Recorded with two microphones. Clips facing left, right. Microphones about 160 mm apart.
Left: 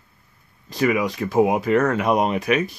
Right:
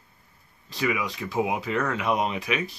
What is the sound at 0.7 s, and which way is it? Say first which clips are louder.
Speech: left 7 dB; 50° left (ahead or behind).